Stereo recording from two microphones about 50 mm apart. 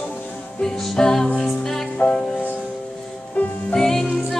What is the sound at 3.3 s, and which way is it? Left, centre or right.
Music, left.